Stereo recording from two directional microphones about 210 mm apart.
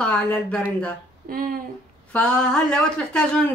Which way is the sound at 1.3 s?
45° right (ahead or behind).